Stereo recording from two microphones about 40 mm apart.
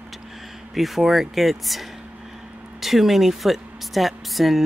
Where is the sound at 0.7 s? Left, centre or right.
Centre.